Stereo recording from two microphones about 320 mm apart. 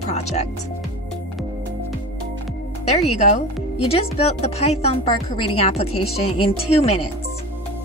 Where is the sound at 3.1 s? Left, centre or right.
Left.